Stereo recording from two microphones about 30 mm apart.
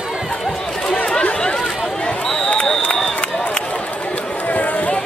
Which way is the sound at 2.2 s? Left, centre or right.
Left.